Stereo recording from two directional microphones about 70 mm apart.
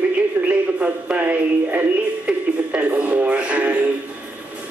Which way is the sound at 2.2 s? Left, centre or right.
Centre.